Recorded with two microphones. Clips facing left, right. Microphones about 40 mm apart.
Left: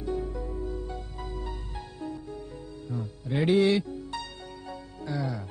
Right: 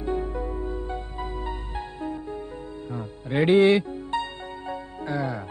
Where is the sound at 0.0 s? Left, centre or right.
Right.